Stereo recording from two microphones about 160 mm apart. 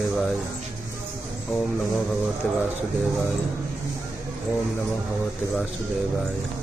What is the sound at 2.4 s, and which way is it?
Speech, 10° left (ahead or behind).